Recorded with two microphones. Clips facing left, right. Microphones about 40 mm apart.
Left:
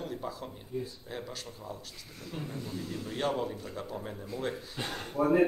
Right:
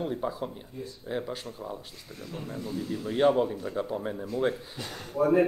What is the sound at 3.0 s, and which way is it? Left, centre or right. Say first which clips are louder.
Speech: right 9 dB; centre.